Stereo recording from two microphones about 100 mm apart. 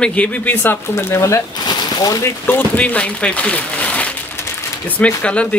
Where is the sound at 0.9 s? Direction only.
30° left (ahead or behind).